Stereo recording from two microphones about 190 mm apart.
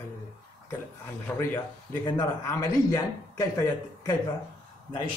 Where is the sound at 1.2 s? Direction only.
10° left (ahead or behind).